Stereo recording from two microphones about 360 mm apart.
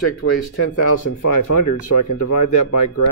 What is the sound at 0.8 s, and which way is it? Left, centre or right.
Speech, left.